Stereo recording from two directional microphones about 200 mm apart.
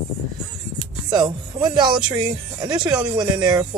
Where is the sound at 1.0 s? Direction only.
20° right (ahead or behind).